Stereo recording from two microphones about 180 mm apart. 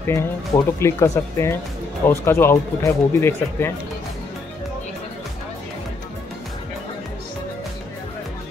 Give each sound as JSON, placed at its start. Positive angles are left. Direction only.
{"t": 0.0, "sound": "speech", "side_deg": 15}